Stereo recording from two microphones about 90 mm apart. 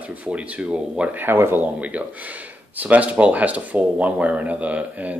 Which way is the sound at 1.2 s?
25° right (ahead or behind).